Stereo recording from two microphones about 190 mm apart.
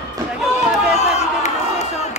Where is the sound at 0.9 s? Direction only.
35° left (ahead or behind).